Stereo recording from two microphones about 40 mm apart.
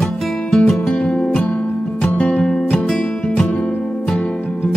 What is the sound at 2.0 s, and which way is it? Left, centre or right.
Music, left.